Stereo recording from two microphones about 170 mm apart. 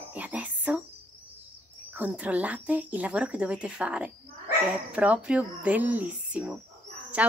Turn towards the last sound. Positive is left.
turn(degrees=-10)  # may be behind; listen again after turning